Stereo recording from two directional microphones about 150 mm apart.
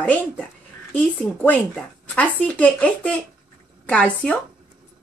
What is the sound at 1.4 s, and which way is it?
Speech, 10° left (ahead or behind).